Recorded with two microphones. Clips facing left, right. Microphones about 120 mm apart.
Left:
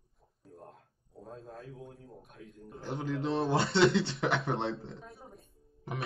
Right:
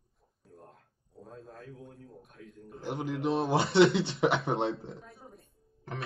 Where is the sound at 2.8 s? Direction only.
20° right (ahead or behind).